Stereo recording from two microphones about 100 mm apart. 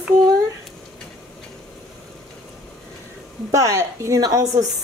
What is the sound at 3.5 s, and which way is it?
Speech, 35° right (ahead or behind).